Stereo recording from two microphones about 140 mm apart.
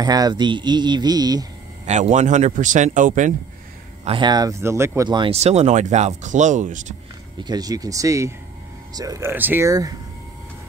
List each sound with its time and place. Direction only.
0.0 s speech: 30° right (ahead or behind)
1.9 s speech: 60° right (ahead or behind)
4.0 s speech: 35° right (ahead or behind)
5.3 s speech: 50° right (ahead or behind)
7.4 s speech: 25° right (ahead or behind)